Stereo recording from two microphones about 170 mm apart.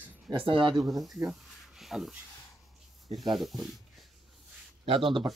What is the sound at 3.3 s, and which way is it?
Speech, centre (ahead or behind).